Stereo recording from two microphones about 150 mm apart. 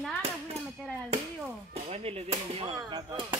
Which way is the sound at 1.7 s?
45° right (ahead or behind).